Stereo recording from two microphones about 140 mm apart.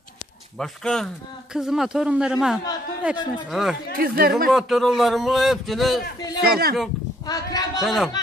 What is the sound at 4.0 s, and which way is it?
Speech, 90° right.